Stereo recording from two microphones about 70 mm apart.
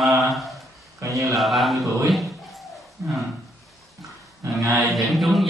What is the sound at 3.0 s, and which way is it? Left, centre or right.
Speech, right.